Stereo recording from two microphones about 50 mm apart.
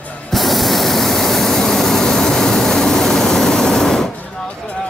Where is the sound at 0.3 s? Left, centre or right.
Centre.